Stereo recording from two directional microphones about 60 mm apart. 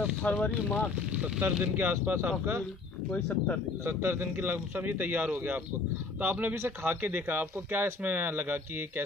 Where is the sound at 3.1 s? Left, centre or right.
Left.